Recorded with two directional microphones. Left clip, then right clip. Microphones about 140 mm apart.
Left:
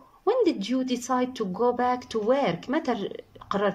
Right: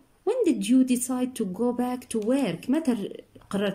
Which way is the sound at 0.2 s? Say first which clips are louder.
Left 1 dB; 20° right (ahead or behind).